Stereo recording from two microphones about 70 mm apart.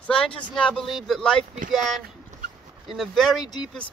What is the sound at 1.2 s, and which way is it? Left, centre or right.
Speech, centre.